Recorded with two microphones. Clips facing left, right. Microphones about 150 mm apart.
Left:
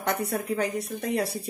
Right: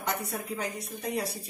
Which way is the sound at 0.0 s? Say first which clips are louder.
Left 5 dB; 65° left (ahead or behind).